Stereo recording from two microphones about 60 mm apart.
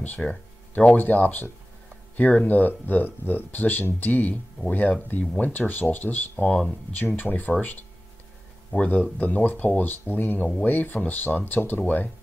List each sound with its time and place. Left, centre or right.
0.2 s a sound: centre
0.9 s speech: left
6.5 s speech: centre
7.0 s speech: left
8.7 s speech: left